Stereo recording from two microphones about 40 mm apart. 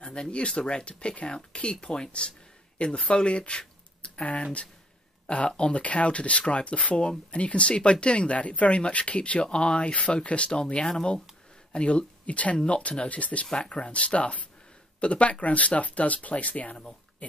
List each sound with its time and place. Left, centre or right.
0.0 s speech: left
12.3 s speech: left
17.2 s a sound: left